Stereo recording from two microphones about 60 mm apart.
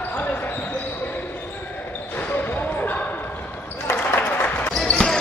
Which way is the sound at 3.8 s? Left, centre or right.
Left.